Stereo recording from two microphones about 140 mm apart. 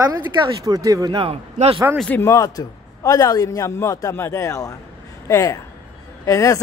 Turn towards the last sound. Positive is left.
turn(degrees=20)  # may be behind; listen again after turning